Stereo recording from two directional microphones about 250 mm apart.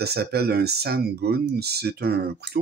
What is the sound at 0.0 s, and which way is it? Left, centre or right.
Speech, right.